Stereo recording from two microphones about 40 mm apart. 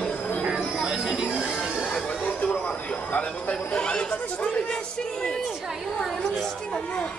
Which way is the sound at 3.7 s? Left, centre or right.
Left.